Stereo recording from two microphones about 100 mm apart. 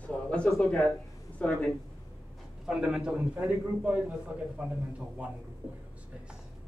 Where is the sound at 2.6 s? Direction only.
5° right (ahead or behind).